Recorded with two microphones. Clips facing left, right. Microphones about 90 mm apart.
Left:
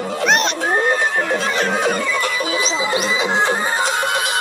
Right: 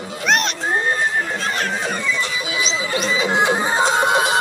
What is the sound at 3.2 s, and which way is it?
Music, 10° right (ahead or behind).